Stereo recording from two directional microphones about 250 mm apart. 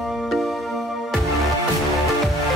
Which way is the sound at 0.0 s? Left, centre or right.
Centre.